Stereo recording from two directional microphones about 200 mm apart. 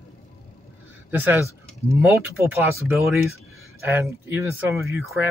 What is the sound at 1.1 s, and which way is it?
Speech, 10° right (ahead or behind).